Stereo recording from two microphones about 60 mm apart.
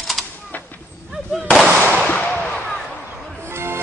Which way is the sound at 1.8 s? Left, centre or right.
Left.